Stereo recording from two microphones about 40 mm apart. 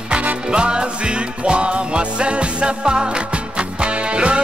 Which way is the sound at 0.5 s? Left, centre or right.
Right.